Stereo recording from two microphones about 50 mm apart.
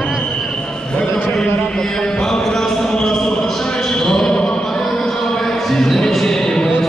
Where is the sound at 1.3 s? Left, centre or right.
Centre.